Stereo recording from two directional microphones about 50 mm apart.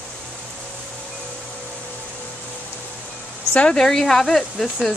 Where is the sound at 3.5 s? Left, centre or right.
Left.